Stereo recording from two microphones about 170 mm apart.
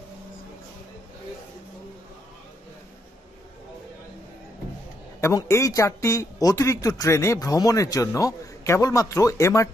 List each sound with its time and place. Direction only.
5.2 s speech: 15° left (ahead or behind)